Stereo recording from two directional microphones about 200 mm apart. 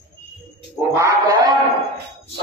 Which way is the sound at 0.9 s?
15° right (ahead or behind).